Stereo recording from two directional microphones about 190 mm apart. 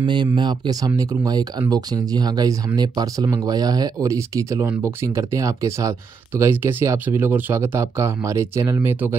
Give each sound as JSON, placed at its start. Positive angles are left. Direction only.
{"t": 0.0, "sound": "speech", "side_deg": -25}